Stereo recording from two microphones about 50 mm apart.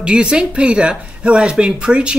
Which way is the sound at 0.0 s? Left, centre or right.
Right.